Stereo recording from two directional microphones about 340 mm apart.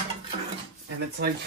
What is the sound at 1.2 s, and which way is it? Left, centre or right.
Speech, right.